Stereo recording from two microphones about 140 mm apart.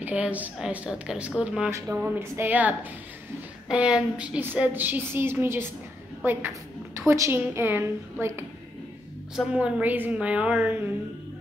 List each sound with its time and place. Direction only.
0.0 s a woman's voice: 10° right (ahead or behind)
1.7 s a woman's voice: 20° right (ahead or behind)
9.3 s a woman's voice: 5° right (ahead or behind)